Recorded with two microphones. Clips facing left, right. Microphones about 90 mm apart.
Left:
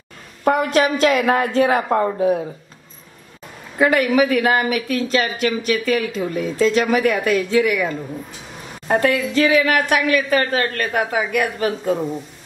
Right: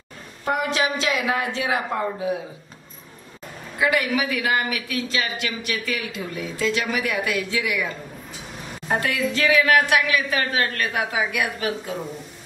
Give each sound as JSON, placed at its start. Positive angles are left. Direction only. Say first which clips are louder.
{"t": 0.5, "sound": "speech", "louder": "left 6 dB", "side_deg": 50}
{"t": 3.7, "sound": "speech", "louder": "left 6 dB", "side_deg": 45}
{"t": 9.0, "sound": "speech", "louder": "left 5 dB", "side_deg": 40}